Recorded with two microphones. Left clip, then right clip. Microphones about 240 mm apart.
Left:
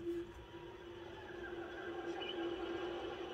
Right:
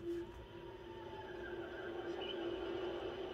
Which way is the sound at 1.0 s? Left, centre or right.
Left.